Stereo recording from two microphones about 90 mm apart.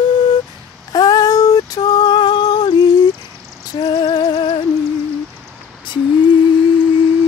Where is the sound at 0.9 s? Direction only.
45° left (ahead or behind).